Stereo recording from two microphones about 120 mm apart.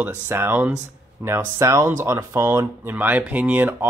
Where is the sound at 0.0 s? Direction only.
15° right (ahead or behind).